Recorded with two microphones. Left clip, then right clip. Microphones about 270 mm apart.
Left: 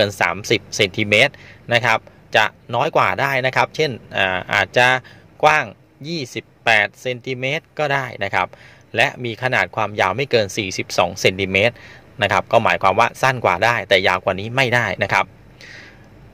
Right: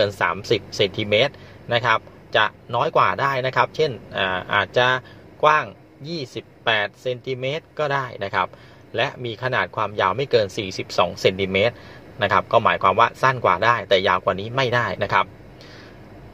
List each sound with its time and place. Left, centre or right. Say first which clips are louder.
0.0 s a man's voice: left 3 dB; left